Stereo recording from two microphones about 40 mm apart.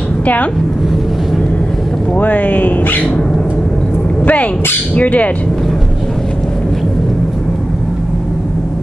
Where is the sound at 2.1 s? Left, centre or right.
Left.